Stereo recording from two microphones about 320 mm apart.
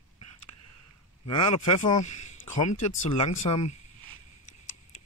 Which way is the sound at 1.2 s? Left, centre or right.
Centre.